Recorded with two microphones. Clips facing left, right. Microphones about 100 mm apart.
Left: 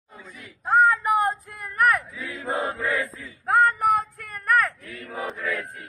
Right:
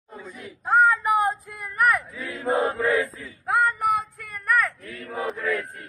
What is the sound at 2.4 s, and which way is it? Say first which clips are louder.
Chant: right 5 dB; 20° right (ahead or behind).